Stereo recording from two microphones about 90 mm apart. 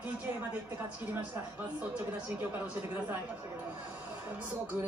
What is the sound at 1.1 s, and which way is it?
Speech, 20° right (ahead or behind).